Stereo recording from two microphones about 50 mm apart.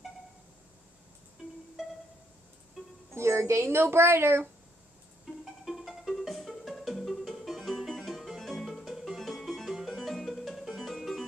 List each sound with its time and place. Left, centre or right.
3.2 s speech: right
5.4 s music: centre